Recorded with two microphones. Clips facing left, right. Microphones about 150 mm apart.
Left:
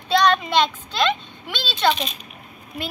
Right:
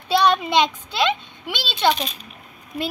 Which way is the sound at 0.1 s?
10° right (ahead or behind).